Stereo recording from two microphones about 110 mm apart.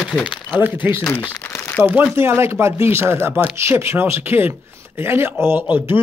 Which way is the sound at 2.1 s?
25° right (ahead or behind).